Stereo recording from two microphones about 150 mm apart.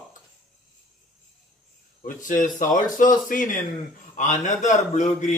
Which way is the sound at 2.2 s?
60° left (ahead or behind).